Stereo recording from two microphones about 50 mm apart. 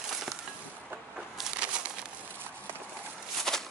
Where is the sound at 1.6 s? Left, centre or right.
Right.